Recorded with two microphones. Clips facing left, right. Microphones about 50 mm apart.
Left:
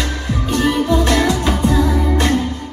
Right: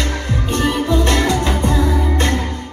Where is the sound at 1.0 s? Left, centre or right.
Right.